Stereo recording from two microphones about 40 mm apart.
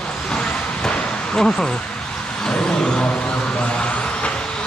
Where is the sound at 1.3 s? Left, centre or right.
Centre.